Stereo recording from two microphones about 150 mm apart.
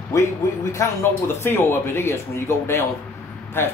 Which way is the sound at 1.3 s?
15° left (ahead or behind).